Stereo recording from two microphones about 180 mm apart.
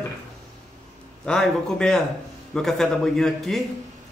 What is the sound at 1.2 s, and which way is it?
A man's voice, 5° left (ahead or behind).